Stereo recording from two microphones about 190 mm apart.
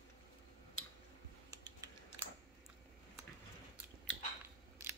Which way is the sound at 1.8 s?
20° right (ahead or behind).